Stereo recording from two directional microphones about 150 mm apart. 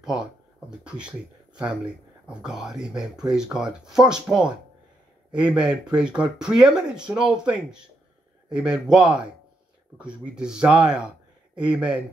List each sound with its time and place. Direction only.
0.7 s speech: 5° right (ahead or behind)
2.2 s speech: 5° right (ahead or behind)